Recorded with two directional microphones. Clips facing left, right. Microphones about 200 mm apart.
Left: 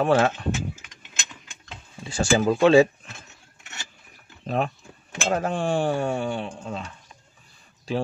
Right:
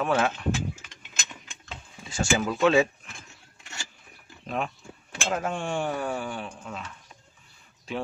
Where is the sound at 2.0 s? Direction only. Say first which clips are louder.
Left 5 dB; 35° left (ahead or behind).